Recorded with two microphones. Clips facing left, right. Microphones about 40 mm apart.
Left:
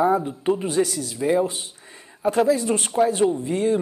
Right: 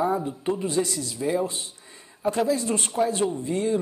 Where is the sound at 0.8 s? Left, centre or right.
Centre.